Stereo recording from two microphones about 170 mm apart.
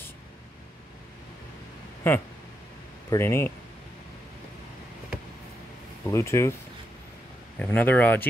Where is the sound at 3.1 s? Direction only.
15° left (ahead or behind).